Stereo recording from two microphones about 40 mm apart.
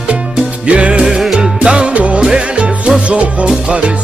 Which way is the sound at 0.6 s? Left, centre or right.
Right.